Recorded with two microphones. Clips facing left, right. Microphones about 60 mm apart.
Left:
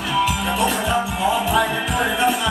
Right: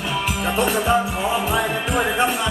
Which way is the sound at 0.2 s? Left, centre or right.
Right.